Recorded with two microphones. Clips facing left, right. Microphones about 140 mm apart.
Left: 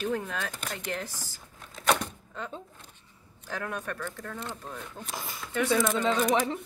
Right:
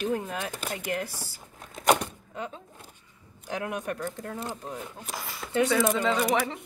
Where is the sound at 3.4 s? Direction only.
15° right (ahead or behind).